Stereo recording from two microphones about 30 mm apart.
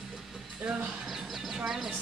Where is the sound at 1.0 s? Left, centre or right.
Centre.